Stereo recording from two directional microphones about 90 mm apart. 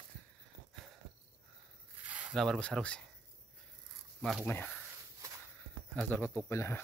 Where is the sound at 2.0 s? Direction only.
15° right (ahead or behind).